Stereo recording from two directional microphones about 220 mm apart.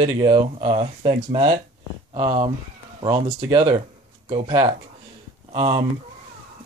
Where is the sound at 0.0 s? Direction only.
25° right (ahead or behind).